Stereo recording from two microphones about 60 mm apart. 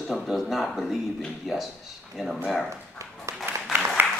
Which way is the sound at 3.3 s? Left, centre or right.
Right.